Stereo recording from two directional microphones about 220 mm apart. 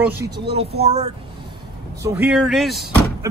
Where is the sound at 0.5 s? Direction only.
25° right (ahead or behind).